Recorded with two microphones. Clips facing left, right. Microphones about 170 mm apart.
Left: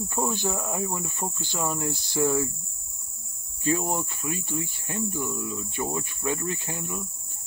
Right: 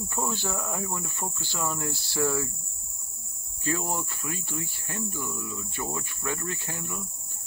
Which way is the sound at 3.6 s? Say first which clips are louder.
Left 4 dB; 20° left (ahead or behind).